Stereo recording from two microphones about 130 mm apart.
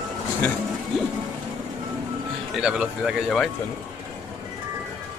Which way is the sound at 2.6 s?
5° right (ahead or behind).